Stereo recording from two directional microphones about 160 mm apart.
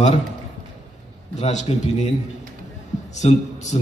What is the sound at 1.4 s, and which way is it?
Speech, 45° left (ahead or behind).